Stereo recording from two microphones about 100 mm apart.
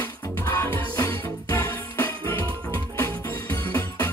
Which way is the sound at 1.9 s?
25° left (ahead or behind).